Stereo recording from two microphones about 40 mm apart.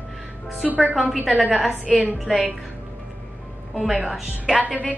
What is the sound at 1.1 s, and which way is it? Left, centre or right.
Speech, right.